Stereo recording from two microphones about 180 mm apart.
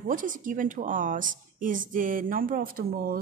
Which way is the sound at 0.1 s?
50° right (ahead or behind).